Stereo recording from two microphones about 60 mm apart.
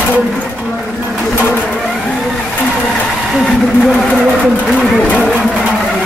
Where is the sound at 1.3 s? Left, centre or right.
Left.